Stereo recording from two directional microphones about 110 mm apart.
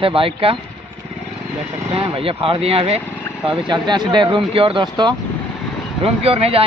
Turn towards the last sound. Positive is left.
turn(degrees=-65)  # may be behind; listen again after turning